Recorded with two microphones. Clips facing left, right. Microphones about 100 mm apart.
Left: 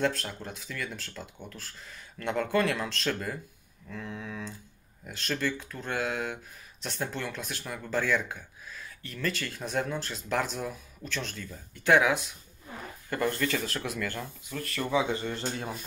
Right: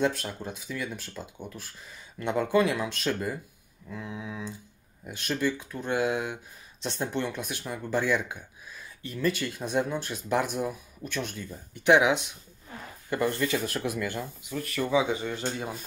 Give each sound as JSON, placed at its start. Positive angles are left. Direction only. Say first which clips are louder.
{"t": 0.0, "sound": "speech", "louder": "right 2 dB", "side_deg": -15}